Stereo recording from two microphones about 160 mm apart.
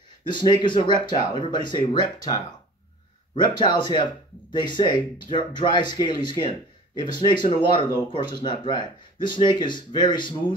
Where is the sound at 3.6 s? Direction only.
30° left (ahead or behind).